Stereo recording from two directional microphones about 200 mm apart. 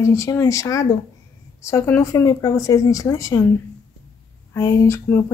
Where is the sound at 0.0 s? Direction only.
15° left (ahead or behind).